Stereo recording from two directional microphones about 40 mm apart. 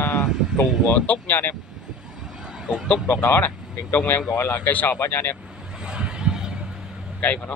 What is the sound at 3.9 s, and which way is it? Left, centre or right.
Speech, left.